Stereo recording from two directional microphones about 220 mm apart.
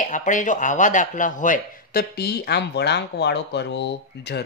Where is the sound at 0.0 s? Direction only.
35° left (ahead or behind).